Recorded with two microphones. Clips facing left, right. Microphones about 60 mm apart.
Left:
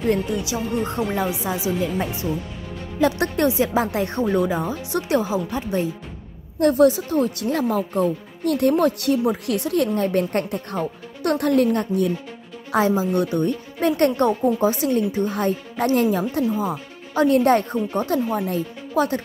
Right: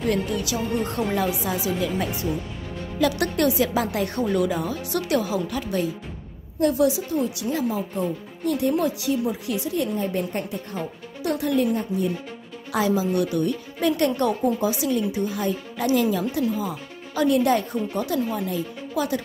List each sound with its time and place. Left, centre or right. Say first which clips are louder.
0.1 s speech: left 3 dB; left
6.6 s speech: left 4 dB; left
12.7 s a woman's voice: left 3 dB; left